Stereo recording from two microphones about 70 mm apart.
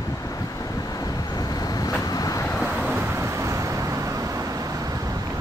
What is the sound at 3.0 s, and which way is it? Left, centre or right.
Vehicle, right.